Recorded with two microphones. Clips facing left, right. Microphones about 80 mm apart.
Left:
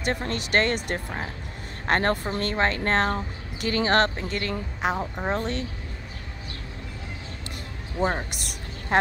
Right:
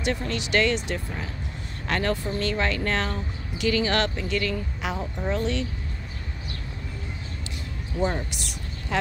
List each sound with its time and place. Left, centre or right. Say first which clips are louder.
0.0 s speech: even; left
8.0 s speech: left 1 dB; left